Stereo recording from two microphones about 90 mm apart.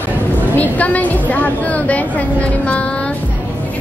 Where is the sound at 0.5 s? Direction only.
20° left (ahead or behind).